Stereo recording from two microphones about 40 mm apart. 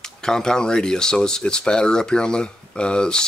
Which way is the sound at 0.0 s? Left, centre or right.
Centre.